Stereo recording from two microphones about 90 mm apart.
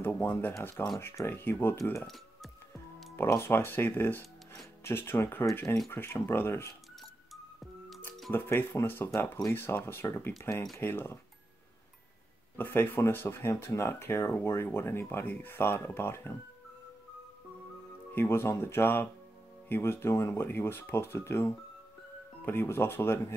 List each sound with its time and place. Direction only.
0.0 s speech: 25° left (ahead or behind)
2.0 s speech: centre (ahead or behind)
3.2 s speech: 30° left (ahead or behind)
8.3 s speech: 25° left (ahead or behind)
12.5 s speech: 25° left (ahead or behind)
18.1 s speech: 25° left (ahead or behind)